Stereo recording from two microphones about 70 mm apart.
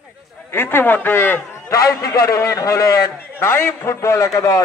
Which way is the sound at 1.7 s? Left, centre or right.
Left.